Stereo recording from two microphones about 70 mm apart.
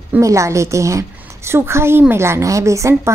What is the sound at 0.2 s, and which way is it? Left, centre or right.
A woman's voice, right.